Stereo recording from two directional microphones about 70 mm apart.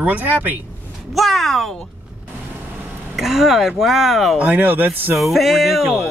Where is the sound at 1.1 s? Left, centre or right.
Centre.